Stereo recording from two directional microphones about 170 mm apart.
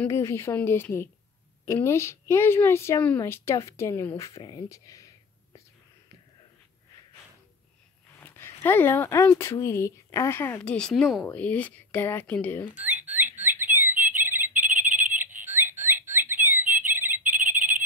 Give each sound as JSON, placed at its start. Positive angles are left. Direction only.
{"t": 0.0, "sound": "a woman's voice", "side_deg": 15}
{"t": 8.2, "sound": "a woman's voice", "side_deg": 10}
{"t": 12.7, "sound": "frog", "side_deg": -10}